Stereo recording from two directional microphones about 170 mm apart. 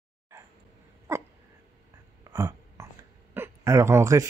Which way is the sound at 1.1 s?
15° right (ahead or behind).